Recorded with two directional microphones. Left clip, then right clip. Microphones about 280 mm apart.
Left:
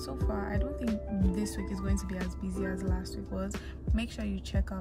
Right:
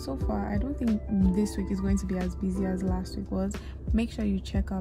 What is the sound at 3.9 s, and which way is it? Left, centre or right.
Speech, centre.